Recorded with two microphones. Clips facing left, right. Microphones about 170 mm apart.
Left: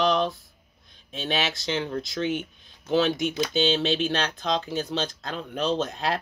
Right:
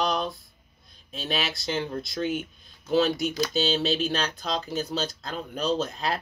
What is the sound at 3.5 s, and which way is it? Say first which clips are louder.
Speech: left 4 dB; 40° right (ahead or behind).